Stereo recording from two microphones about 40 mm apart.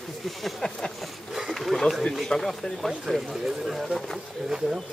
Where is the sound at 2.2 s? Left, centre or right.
Centre.